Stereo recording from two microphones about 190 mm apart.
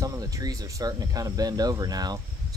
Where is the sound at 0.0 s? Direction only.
20° right (ahead or behind).